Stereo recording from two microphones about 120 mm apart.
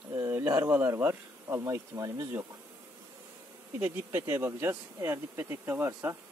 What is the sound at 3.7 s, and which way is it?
Speech, 20° right (ahead or behind).